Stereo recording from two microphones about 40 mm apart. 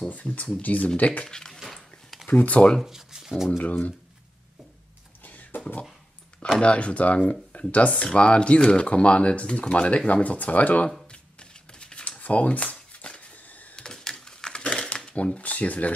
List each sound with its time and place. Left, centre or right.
0.2 s speech: left
1.2 s speech: centre
1.6 s dog: centre
2.2 s speech: left
2.8 s a sound: centre
3.4 s speech: left
5.2 s a sound: left
6.6 s speech: left
11.1 s shuffling cards: left
12.2 s shuffling cards: left
13.5 s a sound: left
13.7 s a sound: centre
14.2 s typewriter: centre; by 15.9 s left